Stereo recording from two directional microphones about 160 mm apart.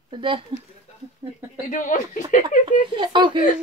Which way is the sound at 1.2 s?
20° right (ahead or behind).